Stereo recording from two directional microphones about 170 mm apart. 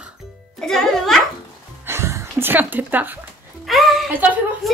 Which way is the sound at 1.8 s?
15° right (ahead or behind).